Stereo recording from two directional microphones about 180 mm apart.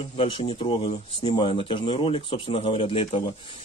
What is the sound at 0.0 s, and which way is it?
Speech, 35° left (ahead or behind).